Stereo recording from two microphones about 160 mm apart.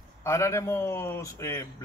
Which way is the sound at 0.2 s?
20° left (ahead or behind).